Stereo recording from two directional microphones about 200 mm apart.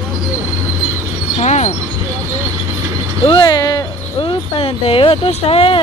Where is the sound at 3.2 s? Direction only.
25° left (ahead or behind).